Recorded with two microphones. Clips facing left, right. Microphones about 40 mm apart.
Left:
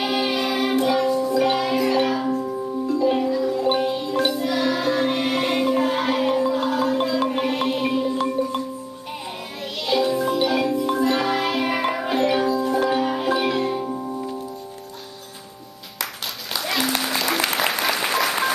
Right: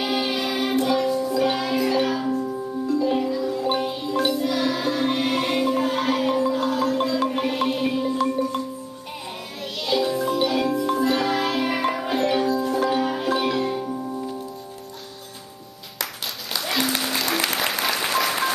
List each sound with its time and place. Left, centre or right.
0.0 s music: centre
8.2 s music: left
9.8 s music: centre
16.5 s applause: centre